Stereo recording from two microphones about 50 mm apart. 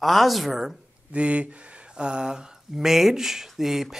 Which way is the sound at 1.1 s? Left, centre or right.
Right.